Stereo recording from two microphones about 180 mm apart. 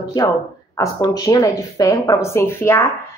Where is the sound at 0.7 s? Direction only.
20° left (ahead or behind).